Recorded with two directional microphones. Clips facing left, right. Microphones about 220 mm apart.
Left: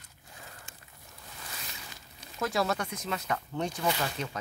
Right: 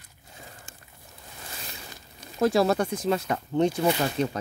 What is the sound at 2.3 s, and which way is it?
Speech, 30° right (ahead or behind).